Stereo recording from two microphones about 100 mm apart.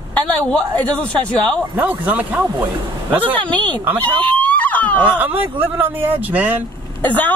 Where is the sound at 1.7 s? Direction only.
15° right (ahead or behind).